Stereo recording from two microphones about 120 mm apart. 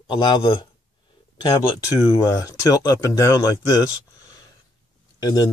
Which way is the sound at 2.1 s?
30° left (ahead or behind).